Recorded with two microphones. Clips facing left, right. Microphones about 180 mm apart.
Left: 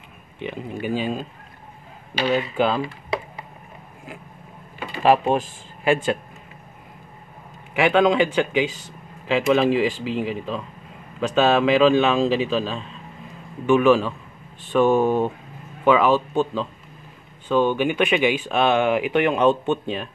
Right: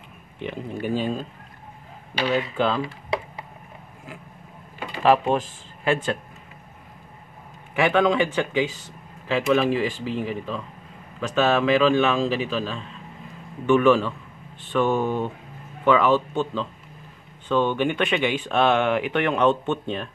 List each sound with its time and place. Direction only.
0.4 s speech: 5° left (ahead or behind)
2.5 s speech: 10° left (ahead or behind)
5.0 s speech: 15° left (ahead or behind)
7.8 s speech: 15° left (ahead or behind)
13.7 s speech: 10° left (ahead or behind)